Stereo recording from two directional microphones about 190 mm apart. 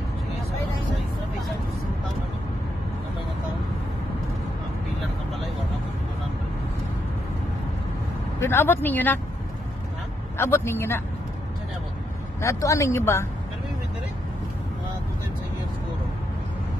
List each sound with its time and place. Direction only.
8.4 s speech: 15° left (ahead or behind)
10.3 s speech: 15° left (ahead or behind)
12.4 s speech: 15° left (ahead or behind)